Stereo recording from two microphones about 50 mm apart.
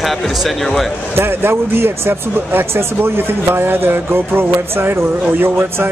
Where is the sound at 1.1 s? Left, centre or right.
Right.